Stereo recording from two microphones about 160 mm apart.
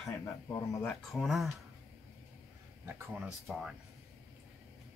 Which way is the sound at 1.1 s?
Centre (ahead or behind).